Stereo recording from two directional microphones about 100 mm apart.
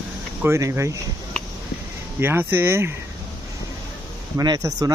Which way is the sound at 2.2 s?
20° right (ahead or behind).